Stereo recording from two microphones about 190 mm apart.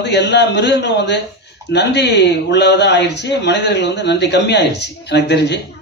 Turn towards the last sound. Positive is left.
turn(degrees=65)  # may be behind; listen again after turning